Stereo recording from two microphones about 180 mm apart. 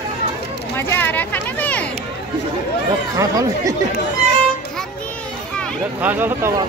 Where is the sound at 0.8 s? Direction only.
10° left (ahead or behind).